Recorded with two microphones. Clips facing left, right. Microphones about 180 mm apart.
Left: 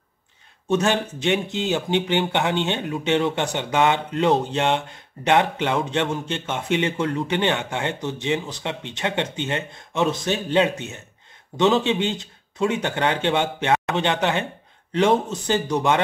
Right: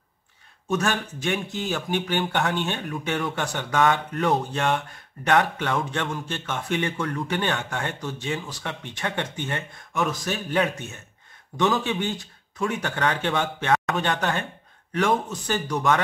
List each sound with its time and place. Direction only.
0.7 s speech: 25° left (ahead or behind)